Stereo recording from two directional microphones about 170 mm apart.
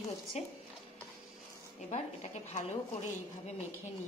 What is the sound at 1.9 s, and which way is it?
Speech, 40° left (ahead or behind).